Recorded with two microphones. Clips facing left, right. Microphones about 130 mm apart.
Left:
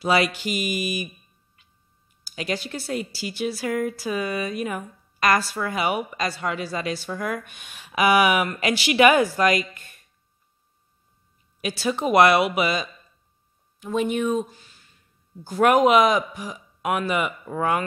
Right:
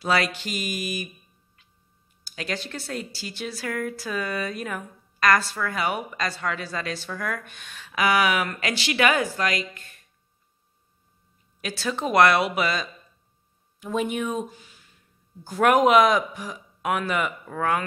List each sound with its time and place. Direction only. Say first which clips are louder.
0.0 s speech: left 3 dB; 10° left (ahead or behind)
2.2 s speech: left 3 dB; 5° left (ahead or behind)
11.6 s speech: left 3 dB; 10° left (ahead or behind)
13.7 s speech: left 3 dB; centre (ahead or behind)